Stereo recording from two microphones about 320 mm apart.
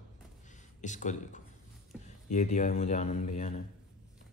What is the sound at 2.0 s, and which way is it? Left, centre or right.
Speech, left.